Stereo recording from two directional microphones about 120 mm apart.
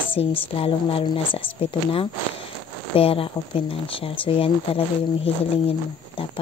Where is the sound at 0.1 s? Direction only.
50° left (ahead or behind).